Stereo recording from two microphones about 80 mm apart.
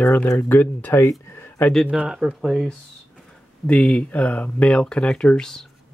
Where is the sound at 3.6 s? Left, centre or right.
Centre.